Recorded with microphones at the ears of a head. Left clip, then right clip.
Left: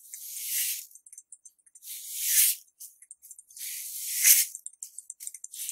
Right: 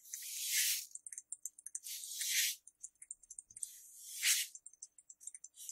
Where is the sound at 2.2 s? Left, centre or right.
Left.